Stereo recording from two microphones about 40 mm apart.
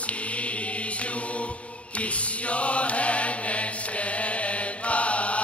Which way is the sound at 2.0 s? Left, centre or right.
Left.